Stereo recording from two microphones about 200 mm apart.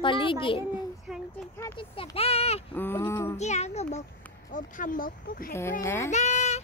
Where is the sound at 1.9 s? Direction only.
30° left (ahead or behind).